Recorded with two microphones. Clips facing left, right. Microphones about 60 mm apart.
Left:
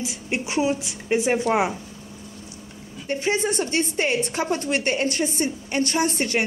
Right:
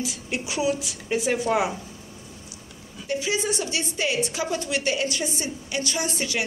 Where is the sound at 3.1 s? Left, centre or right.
Left.